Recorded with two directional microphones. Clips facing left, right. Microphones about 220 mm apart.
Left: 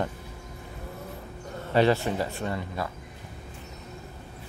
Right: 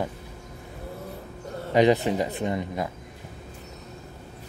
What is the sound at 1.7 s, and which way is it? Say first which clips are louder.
Speech: right 3 dB; 15° right (ahead or behind).